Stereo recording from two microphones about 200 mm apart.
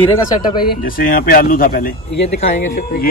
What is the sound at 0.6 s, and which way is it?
Speech, 45° left (ahead or behind).